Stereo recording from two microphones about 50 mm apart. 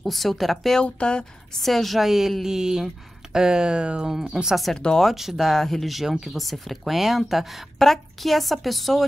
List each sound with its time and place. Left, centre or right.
0.0 s speech: centre
0.8 s speech: left
1.6 s speech: centre
4.7 s speech: centre
5.0 s speech: centre
6.3 s speech: centre